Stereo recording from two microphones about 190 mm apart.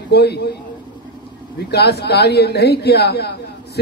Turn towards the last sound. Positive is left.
turn(degrees=60)  # may be behind; listen again after turning